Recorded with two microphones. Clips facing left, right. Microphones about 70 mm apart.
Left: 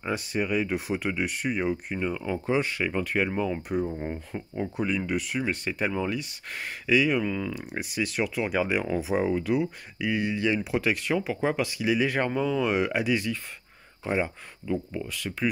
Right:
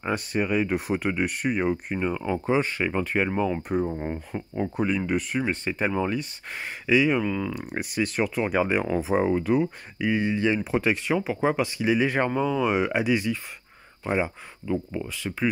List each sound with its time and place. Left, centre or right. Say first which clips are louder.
0.0 s speech: right 2 dB; right
4.0 s speech: right 2 dB; right
4.6 s speech: right 3 dB; right
6.5 s speech: right 2 dB; right
7.2 s speech: right 2 dB; centre
7.5 s speech: right 3 dB; right
11.8 s speech: right 2 dB; right